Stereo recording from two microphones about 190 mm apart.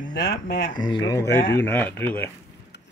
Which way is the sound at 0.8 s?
20° left (ahead or behind).